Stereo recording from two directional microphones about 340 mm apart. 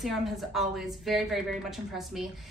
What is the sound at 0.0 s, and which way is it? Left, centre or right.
A woman's voice, centre.